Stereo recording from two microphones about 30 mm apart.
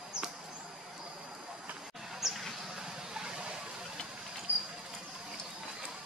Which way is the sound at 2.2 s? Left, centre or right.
Centre.